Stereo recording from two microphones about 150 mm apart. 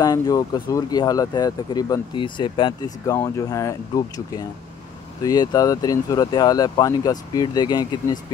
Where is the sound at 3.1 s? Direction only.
20° left (ahead or behind).